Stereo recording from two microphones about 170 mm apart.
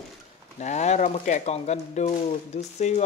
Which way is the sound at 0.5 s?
45° left (ahead or behind).